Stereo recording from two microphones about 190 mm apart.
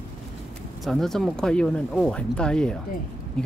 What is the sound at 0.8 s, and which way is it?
Speech, centre (ahead or behind).